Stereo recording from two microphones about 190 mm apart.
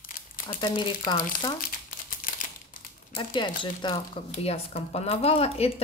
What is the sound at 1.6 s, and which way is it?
Crumpling, 45° left (ahead or behind).